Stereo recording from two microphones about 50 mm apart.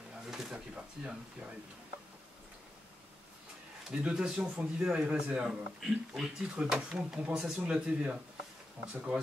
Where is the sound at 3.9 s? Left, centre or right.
Centre.